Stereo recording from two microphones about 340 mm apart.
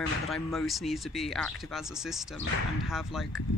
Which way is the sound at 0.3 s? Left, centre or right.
Centre.